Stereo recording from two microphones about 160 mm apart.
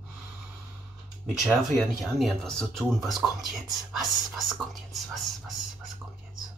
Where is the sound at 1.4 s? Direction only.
Centre (ahead or behind).